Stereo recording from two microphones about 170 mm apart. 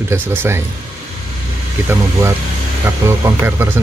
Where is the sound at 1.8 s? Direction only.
15° right (ahead or behind).